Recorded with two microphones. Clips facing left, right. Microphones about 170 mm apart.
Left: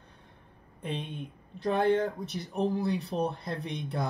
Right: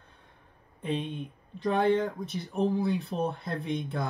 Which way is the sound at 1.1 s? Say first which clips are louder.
Right 2 dB; 5° left (ahead or behind).